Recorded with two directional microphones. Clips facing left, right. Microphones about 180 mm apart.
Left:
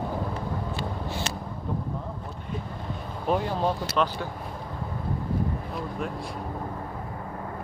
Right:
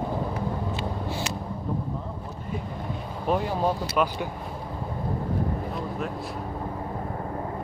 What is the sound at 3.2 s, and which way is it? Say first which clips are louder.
Speech: right 1 dB; 5° right (ahead or behind).